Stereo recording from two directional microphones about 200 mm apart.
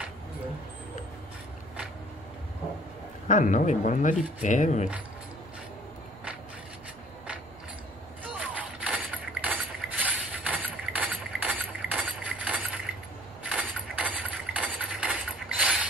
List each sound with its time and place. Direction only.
3.3 s speech: 40° left (ahead or behind)
8.2 s mechanisms: 5° right (ahead or behind)
10.0 s a sound: 5° right (ahead or behind)
15.6 s mechanisms: 5° right (ahead or behind)